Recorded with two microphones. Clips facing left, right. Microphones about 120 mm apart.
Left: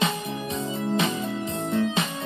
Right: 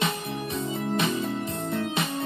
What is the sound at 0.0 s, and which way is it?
Music, 20° left (ahead or behind).